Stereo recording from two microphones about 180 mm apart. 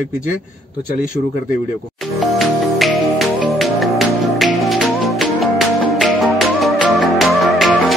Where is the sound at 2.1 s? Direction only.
Centre (ahead or behind).